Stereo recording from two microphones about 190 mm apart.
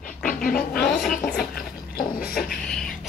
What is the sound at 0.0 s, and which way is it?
Vehicle, 45° left (ahead or behind).